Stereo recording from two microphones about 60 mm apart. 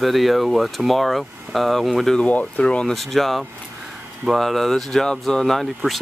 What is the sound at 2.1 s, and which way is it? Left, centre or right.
Speech, left.